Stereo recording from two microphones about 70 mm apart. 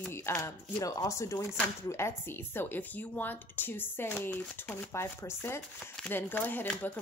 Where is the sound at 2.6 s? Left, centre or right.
Left.